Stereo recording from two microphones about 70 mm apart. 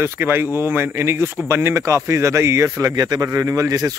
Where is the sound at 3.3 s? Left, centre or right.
Right.